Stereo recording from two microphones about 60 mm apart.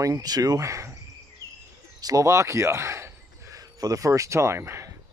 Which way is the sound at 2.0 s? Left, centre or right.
Right.